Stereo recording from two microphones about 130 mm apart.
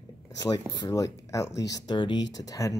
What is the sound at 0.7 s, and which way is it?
Speech, 25° left (ahead or behind).